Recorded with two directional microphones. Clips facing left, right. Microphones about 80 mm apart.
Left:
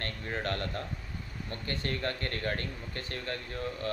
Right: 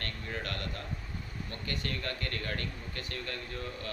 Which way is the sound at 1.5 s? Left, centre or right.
Left.